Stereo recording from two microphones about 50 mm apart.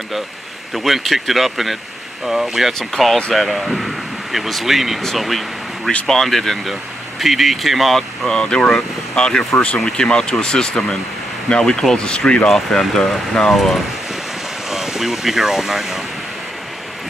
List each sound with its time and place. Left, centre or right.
0.7 s speech: centre
8.3 s speech: centre
14.7 s speech: centre